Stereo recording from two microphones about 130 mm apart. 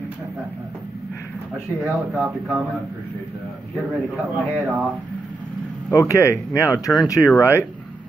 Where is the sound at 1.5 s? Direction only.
10° right (ahead or behind).